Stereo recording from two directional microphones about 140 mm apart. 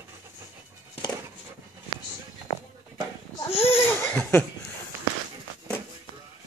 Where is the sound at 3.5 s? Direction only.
45° left (ahead or behind).